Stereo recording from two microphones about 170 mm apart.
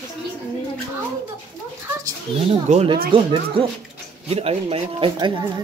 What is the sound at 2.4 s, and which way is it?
Speech, 35° right (ahead or behind).